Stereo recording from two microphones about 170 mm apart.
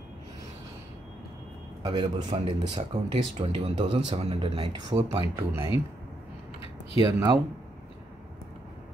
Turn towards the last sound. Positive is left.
turn(degrees=-25)  # may be behind; listen again after turning